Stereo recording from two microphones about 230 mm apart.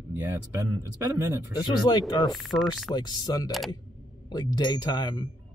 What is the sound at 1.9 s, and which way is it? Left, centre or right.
Speech, centre.